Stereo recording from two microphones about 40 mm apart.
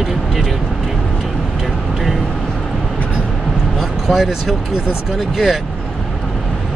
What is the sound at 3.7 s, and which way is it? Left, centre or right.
Speech, centre.